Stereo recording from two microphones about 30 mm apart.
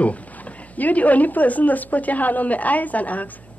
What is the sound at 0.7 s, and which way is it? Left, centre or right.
A woman's voice, left.